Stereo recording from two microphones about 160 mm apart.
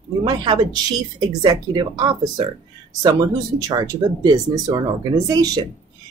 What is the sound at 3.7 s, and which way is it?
Speech, 25° right (ahead or behind).